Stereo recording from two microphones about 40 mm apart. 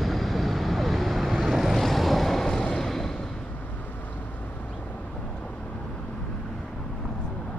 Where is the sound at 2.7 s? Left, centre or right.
Centre.